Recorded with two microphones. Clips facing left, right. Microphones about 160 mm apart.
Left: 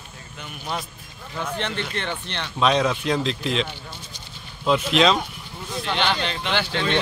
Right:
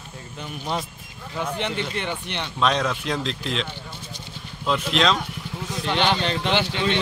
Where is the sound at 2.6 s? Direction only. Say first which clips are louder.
Left 3 dB; 5° left (ahead or behind).